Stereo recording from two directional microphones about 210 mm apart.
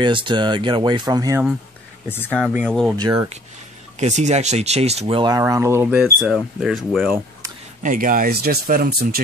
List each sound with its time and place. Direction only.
0.0 s speech: 20° right (ahead or behind)
2.0 s speech: 10° left (ahead or behind)
3.0 s speech: 20° right (ahead or behind)
4.0 s speech: 35° right (ahead or behind); by 7.1 s centre (ahead or behind)
7.8 s speech: 40° right (ahead or behind)